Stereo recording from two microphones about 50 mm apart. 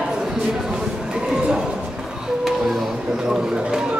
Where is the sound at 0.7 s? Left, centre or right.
Centre.